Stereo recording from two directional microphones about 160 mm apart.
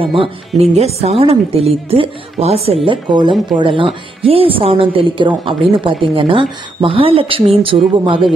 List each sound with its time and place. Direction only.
0.0 s a woman's voice: 35° right (ahead or behind)